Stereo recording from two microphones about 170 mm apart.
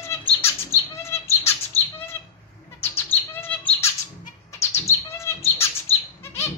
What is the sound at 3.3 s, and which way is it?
Bird, 10° left (ahead or behind).